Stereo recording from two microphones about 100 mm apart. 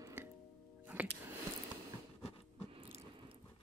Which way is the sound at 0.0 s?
25° right (ahead or behind).